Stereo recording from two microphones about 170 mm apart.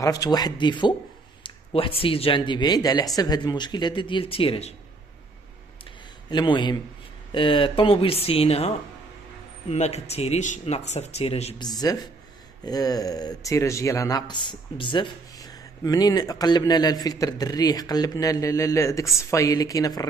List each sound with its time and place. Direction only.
0.0 s speech: 20° left (ahead or behind)
6.3 s speech: 30° left (ahead or behind)
11.5 s speech: 25° left (ahead or behind)